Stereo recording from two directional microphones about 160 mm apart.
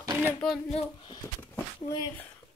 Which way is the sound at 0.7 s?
40° left (ahead or behind).